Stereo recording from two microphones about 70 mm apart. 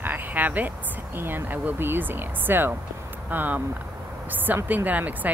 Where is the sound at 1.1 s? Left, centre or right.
Right.